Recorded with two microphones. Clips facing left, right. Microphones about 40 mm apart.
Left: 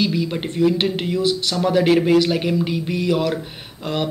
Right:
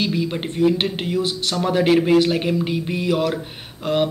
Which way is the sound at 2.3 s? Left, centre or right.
Right.